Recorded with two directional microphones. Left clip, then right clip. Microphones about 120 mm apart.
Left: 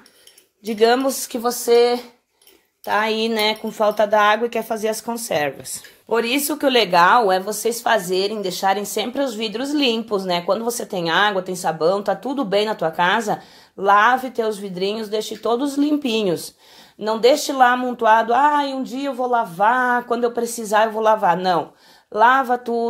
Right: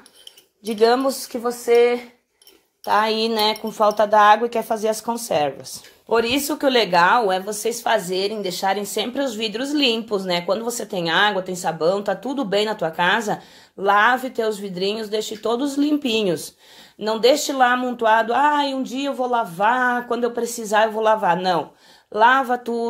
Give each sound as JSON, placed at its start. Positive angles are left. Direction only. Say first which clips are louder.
{"t": 0.7, "sound": "speech", "louder": "left 1 dB", "side_deg": 5}
{"t": 1.4, "sound": "speech", "louder": "left 1 dB", "side_deg": 30}
{"t": 2.8, "sound": "speech", "louder": "right 1 dB", "side_deg": 0}